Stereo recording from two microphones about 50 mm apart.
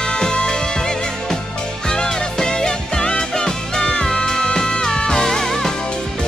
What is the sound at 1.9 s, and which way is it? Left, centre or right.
Music, centre.